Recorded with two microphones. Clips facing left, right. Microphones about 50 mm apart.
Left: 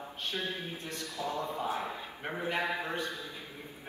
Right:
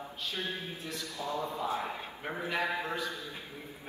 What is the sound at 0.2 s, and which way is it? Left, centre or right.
Speech, left.